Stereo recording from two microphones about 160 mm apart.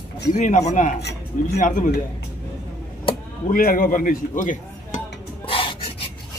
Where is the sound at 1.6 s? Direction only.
55° left (ahead or behind).